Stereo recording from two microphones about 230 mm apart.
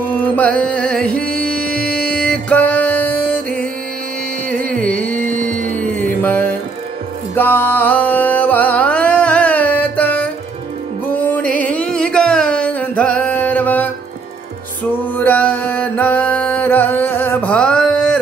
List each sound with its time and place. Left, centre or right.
0.4 s music: centre
4.6 s carnatic music: right
4.8 s carnatic music: centre
5.2 s music: right
5.9 s music: centre
11.3 s music: centre
15.1 s music: centre